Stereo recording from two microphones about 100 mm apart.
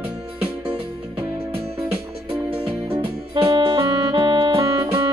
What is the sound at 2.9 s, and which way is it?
Music, 50° right (ahead or behind).